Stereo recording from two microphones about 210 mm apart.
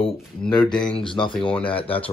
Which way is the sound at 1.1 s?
25° left (ahead or behind).